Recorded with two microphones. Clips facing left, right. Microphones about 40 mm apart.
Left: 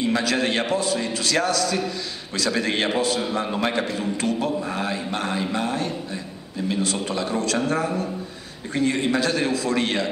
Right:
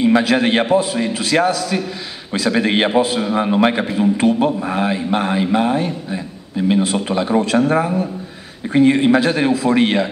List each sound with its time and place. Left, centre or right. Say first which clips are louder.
0.0 s a man's voice: right 8 dB; right